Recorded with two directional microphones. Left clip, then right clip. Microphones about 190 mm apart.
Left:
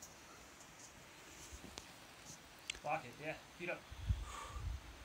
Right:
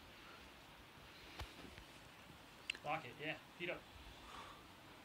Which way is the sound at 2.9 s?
30° left (ahead or behind).